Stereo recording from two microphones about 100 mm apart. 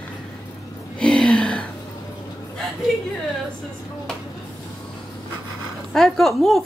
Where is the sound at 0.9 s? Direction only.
10° left (ahead or behind).